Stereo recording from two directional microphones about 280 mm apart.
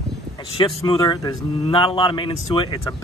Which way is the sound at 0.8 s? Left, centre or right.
Centre.